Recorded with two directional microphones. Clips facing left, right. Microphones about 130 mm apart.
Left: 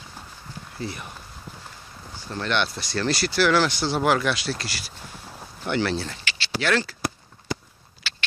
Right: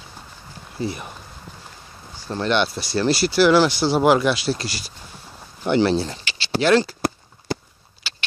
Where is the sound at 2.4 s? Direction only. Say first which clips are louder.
Right 5 dB; 15° right (ahead or behind).